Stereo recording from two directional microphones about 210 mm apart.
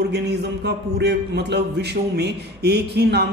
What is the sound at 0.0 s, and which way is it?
A man's voice, 50° right (ahead or behind).